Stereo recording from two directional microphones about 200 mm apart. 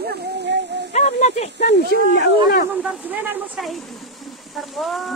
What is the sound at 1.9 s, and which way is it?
Speech, 65° left (ahead or behind).